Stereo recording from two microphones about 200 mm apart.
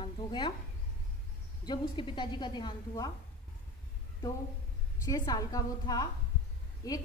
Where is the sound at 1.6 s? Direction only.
25° left (ahead or behind).